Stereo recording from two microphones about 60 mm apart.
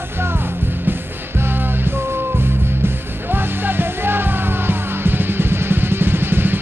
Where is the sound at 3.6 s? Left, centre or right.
Right.